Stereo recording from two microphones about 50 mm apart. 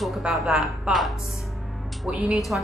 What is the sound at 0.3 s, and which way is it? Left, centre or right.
Speech, centre.